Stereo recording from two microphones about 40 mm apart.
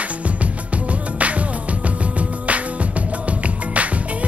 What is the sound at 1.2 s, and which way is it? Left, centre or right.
Music, right.